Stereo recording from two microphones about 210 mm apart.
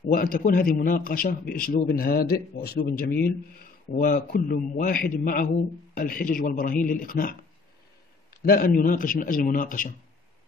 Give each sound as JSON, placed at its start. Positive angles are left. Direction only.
{"t": 0.0, "sound": "a man's voice", "side_deg": 45}
{"t": 8.4, "sound": "a man's voice", "side_deg": 45}